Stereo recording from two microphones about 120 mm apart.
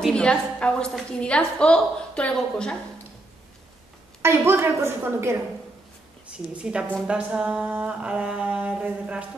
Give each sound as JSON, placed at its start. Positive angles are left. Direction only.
{"t": 0.0, "sound": "a woman's voice", "side_deg": 10}
{"t": 4.2, "sound": "a woman's voice", "side_deg": -20}
{"t": 6.2, "sound": "a sound", "side_deg": -10}